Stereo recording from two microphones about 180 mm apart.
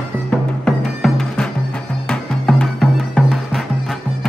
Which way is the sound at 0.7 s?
5° left (ahead or behind).